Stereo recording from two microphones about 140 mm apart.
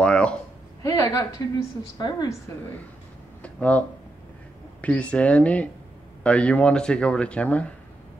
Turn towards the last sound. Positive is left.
turn(degrees=10)  # may be behind; listen again after turning